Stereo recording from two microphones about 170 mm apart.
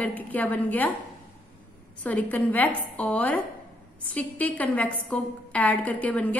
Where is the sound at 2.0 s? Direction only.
10° left (ahead or behind).